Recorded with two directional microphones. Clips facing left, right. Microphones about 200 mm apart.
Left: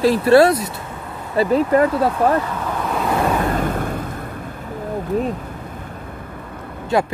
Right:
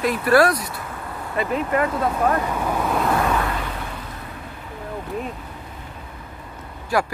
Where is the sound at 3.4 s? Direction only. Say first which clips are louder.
Left 8 dB; 45° left (ahead or behind).